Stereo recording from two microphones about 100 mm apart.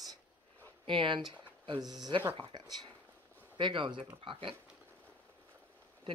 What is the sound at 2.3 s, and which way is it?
Speech, 50° right (ahead or behind).